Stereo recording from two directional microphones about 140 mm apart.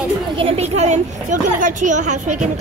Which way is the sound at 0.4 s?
45° right (ahead or behind).